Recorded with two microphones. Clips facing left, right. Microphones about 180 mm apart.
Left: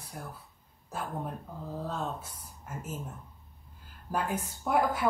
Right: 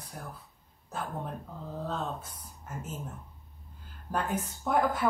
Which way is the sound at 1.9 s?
10° left (ahead or behind).